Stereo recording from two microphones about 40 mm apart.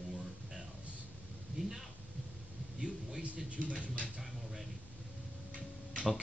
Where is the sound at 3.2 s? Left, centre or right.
Right.